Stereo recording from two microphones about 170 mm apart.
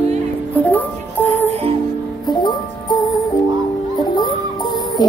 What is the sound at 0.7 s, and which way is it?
Music, 10° left (ahead or behind).